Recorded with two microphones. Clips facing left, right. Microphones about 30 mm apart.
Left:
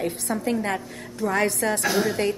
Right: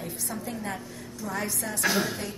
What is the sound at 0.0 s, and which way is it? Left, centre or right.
A woman's voice, left.